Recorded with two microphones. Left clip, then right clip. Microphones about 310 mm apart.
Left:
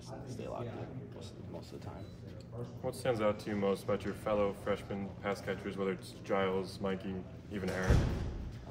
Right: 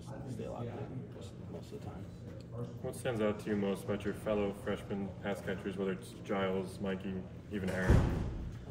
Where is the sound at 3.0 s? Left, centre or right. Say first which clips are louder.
Left 2 dB; left.